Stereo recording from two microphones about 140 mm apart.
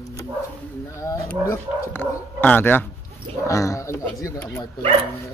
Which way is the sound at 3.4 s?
20° left (ahead or behind).